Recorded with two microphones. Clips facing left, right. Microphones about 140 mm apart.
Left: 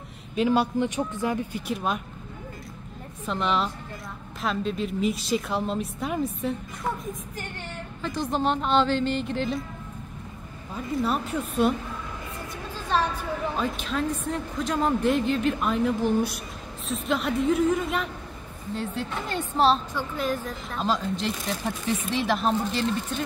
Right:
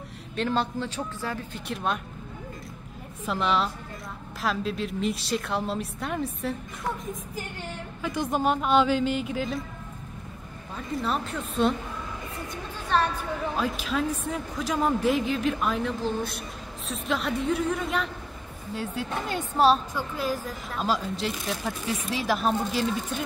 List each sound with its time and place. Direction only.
0.4 s speech: 10° left (ahead or behind)
1.5 s a woman's voice: 5° left (ahead or behind)
3.3 s a woman's voice: centre (ahead or behind)
8.2 s speech: 10° right (ahead or behind)
11.0 s a woman's voice: 5° left (ahead or behind)
13.6 s a woman's voice: centre (ahead or behind)